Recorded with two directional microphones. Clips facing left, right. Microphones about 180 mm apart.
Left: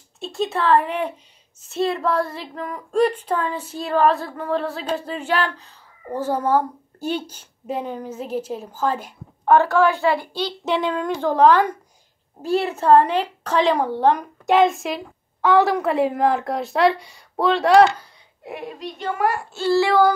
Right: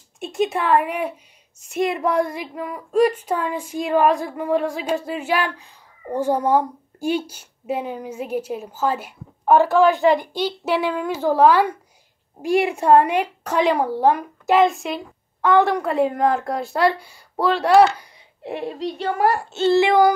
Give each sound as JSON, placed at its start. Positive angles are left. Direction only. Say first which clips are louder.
{"t": 0.2, "sound": "a woman's voice", "louder": "right 1 dB", "side_deg": -15}
{"t": 18.4, "sound": "a woman's voice", "louder": "right 5 dB", "side_deg": -30}
{"t": 19.5, "sound": "child singing", "louder": "right 1 dB", "side_deg": -20}